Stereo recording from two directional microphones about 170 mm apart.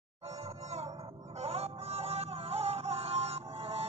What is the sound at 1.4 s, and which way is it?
Music, 35° right (ahead or behind).